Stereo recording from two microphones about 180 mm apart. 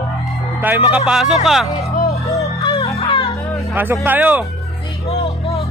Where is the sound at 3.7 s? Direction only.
10° right (ahead or behind).